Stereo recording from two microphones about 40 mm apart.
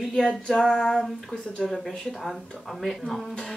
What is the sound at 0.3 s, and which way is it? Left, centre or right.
Female singing, left.